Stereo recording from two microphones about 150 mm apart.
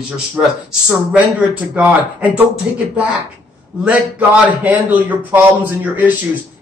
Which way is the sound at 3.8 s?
10° right (ahead or behind).